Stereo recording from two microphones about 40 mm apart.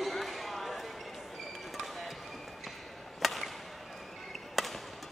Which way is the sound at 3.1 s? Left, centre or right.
Centre.